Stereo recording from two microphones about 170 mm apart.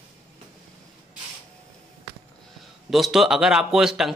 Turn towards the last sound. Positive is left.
turn(degrees=0)  # may be behind; listen again after turning